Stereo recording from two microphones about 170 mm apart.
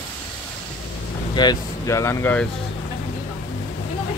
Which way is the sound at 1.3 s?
20° left (ahead or behind).